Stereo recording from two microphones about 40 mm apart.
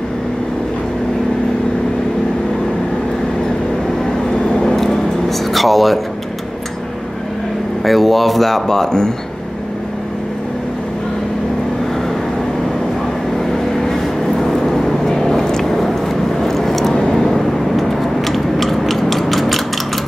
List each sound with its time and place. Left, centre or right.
4.5 s vehicle: centre
7.8 s speech: centre
13.5 s vehicle: centre